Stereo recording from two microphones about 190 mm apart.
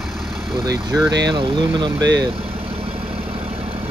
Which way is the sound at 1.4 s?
25° right (ahead or behind).